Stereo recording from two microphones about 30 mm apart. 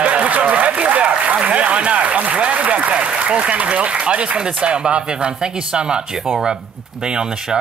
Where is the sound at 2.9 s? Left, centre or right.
Right.